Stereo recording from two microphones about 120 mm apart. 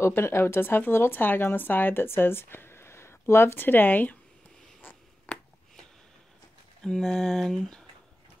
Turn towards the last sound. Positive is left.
turn(degrees=5)  # may be behind; listen again after turning